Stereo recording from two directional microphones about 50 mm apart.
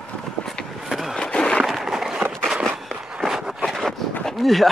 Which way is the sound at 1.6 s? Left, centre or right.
Centre.